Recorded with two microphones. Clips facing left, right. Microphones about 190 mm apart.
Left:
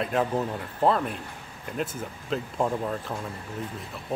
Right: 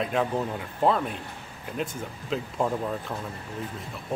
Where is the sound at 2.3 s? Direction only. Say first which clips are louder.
Even; centre (ahead or behind).